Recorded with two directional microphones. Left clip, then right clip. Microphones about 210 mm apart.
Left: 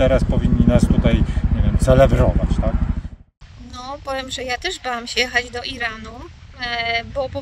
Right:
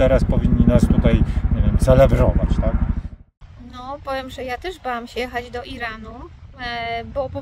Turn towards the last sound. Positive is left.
turn(degrees=-5)  # may be behind; listen again after turning